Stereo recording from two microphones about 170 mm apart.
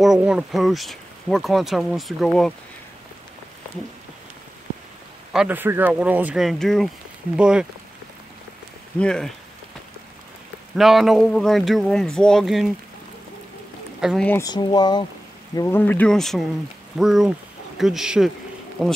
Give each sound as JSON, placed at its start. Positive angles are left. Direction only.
{"t": 0.0, "sound": "speech", "side_deg": -5}
{"t": 5.3, "sound": "speech", "side_deg": -5}
{"t": 8.9, "sound": "speech", "side_deg": 5}
{"t": 10.8, "sound": "speech", "side_deg": 0}
{"t": 14.0, "sound": "speech", "side_deg": 0}
{"t": 14.3, "sound": "speech", "side_deg": 20}